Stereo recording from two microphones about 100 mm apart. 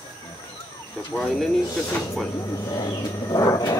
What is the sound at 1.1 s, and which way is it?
Speech, 5° left (ahead or behind).